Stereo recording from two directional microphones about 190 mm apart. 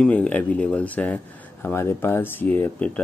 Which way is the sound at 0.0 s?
5° left (ahead or behind).